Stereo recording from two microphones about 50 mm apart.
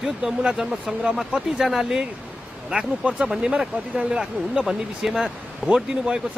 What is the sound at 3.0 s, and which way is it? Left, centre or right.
Speech, right.